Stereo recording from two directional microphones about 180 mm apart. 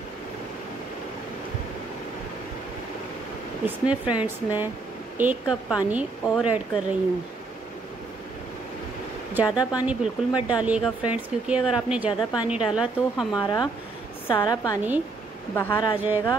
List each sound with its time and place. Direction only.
3.6 s speech: 5° right (ahead or behind)
9.3 s a woman's voice: 5° right (ahead or behind)
13.4 s a woman's voice: 25° left (ahead or behind)